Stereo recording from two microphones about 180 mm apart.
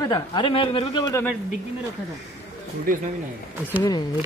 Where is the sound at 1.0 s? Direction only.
15° left (ahead or behind).